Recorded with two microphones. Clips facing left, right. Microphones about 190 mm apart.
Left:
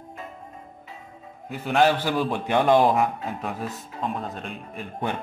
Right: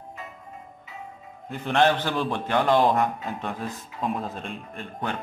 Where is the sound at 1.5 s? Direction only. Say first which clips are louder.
Left 1 dB; 5° left (ahead or behind).